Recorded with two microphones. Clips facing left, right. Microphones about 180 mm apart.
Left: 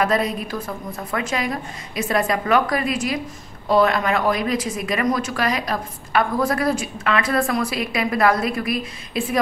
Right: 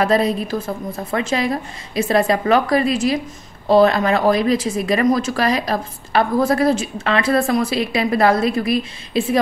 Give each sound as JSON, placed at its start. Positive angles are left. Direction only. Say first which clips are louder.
{"t": 0.0, "sound": "a woman's voice", "louder": "right 4 dB", "side_deg": -30}